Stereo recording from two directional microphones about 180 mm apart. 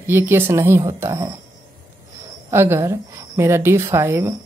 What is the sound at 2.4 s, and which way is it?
A woman's voice, 15° right (ahead or behind).